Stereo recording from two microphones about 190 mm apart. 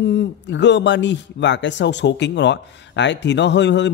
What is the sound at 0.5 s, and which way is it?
A man's voice, 70° left (ahead or behind).